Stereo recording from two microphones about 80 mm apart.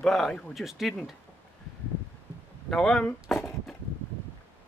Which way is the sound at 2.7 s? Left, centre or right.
Centre.